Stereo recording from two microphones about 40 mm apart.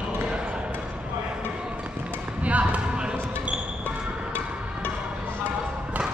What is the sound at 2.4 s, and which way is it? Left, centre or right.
Basketball bounce, right.